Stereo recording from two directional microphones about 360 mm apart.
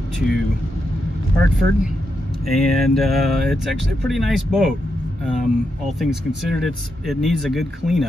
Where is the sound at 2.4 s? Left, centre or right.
Centre.